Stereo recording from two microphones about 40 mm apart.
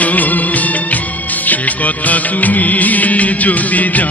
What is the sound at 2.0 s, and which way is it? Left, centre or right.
Music, left.